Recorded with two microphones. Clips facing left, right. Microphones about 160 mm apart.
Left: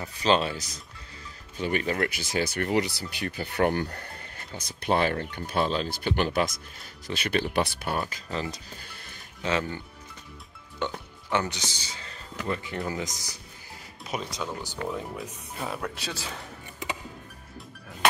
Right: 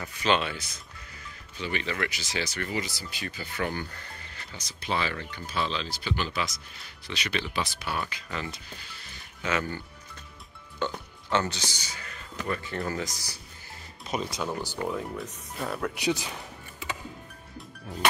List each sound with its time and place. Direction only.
0.0 s speech: 35° left (ahead or behind)
8.3 s speech: 30° left (ahead or behind)
8.8 s music: 50° left (ahead or behind)
9.4 s speech: 30° left (ahead or behind)
10.8 s speech: 20° left (ahead or behind)
14.0 s speech: 5° left (ahead or behind)
15.9 s speech: 15° right (ahead or behind)